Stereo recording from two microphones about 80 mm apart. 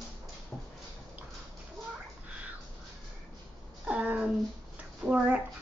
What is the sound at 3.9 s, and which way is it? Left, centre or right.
A woman's voice, centre.